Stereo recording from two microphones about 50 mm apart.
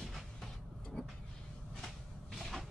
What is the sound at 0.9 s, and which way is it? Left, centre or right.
Vehicle, centre.